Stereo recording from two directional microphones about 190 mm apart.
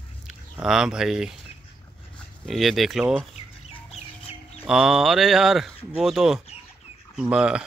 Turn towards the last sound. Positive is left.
turn(degrees=-5)  # may be behind; listen again after turning